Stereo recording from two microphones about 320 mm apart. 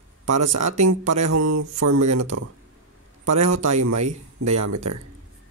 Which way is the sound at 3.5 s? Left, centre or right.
Right.